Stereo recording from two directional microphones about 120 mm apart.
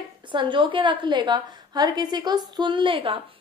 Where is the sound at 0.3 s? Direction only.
45° right (ahead or behind).